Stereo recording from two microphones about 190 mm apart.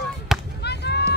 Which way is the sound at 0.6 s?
60° left (ahead or behind).